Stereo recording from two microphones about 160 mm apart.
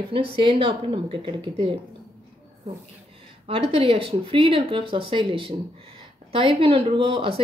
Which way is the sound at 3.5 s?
35° right (ahead or behind).